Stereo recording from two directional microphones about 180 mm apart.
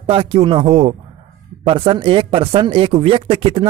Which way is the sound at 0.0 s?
30° right (ahead or behind).